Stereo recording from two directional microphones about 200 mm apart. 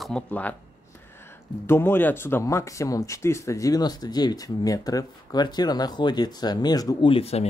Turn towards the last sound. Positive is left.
turn(degrees=30)  # may be behind; listen again after turning